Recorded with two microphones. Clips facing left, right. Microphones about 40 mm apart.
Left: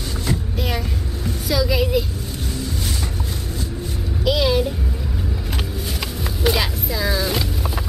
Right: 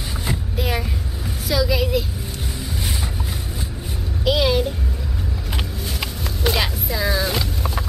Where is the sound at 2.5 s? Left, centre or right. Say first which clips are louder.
Left 2 dB; centre.